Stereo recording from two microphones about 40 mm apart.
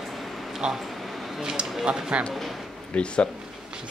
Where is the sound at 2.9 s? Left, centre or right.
Left.